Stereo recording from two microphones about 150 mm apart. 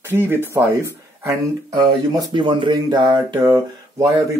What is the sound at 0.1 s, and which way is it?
Speech, 15° right (ahead or behind).